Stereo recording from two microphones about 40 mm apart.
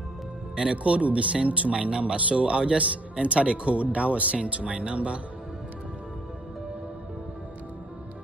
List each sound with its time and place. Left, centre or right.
0.6 s speech: right